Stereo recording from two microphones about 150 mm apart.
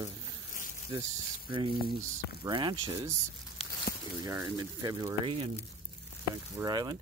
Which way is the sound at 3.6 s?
40° left (ahead or behind).